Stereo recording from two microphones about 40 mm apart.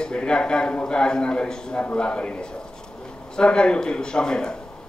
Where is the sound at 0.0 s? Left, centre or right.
Left.